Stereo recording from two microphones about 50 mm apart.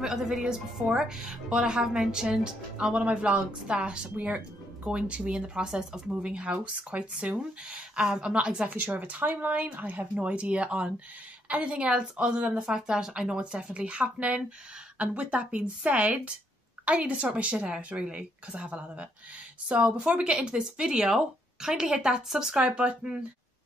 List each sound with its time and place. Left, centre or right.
0.0 s a woman's voice: centre
3.0 s speech: right
8.6 s speech: right
12.6 s a woman's voice: centre